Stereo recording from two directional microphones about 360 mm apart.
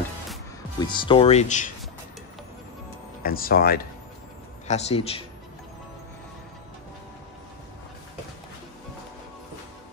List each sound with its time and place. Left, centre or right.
0.7 s speech: centre
3.2 s speech: left